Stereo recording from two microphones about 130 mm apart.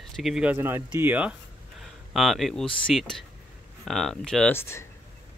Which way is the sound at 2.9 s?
5° right (ahead or behind).